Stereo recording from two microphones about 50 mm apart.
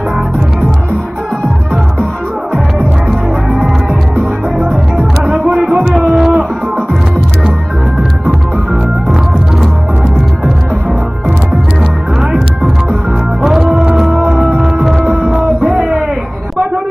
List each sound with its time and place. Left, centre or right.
3.1 s music: centre
5.9 s a sound: centre
12.2 s music: centre
13.9 s music: centre
15.0 s music: right